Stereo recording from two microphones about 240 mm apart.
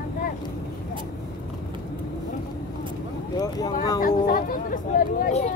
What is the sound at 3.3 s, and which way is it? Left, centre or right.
Vehicle, centre.